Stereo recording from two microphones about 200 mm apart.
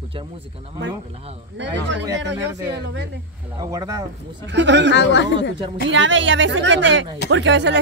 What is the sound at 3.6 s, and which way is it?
Speech, 20° right (ahead or behind).